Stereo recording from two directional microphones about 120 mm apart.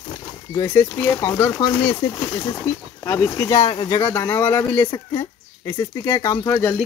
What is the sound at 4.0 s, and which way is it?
Speech, 20° left (ahead or behind).